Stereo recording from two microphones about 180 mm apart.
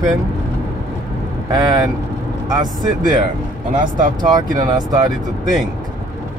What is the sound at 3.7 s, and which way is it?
Speech, 45° right (ahead or behind).